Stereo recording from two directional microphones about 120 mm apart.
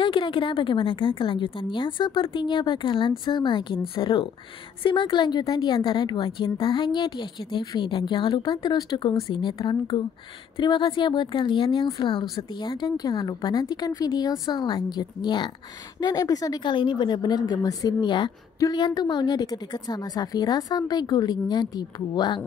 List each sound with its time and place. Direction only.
0.0 s a woman's voice: 45° left (ahead or behind)